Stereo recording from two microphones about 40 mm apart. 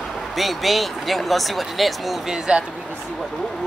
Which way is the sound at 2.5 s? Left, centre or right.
Right.